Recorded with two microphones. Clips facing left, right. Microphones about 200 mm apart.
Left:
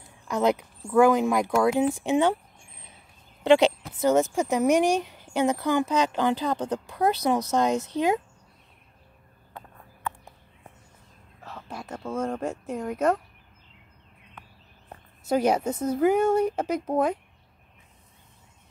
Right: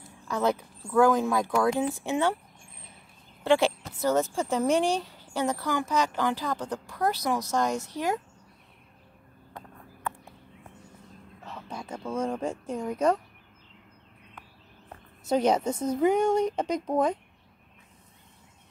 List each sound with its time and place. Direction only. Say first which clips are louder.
0.3 s speech: left 3 dB; 15° left (ahead or behind)
3.4 s speech: left 4 dB; 20° left (ahead or behind)
11.4 s a sound: left 1 dB; 5° left (ahead or behind)
12.0 s speech: left 1 dB; 5° left (ahead or behind)
15.2 s speech: left 1 dB; 10° left (ahead or behind)